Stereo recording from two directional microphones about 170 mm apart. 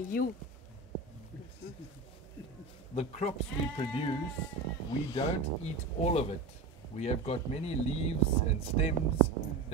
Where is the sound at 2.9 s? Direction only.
40° left (ahead or behind).